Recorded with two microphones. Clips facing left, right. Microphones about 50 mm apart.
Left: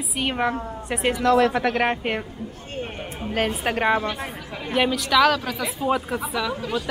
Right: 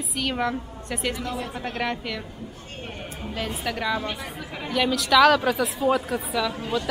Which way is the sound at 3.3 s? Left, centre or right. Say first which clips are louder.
Left 6 dB; left.